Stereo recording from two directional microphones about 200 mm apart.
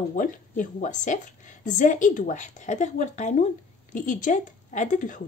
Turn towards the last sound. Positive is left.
turn(degrees=40)  # may be behind; listen again after turning